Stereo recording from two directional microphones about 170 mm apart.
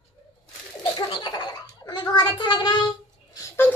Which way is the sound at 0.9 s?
25° left (ahead or behind).